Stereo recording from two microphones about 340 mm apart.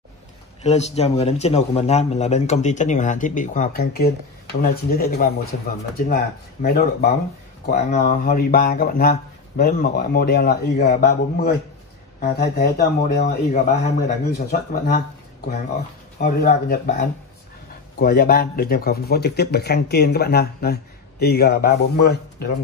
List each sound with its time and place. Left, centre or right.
0.6 s a man's voice: centre
16.2 s a man's voice: left